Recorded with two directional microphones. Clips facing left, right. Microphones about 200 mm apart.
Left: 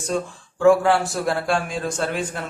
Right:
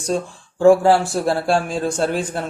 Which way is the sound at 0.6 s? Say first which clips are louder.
Right 3 dB; 30° right (ahead or behind).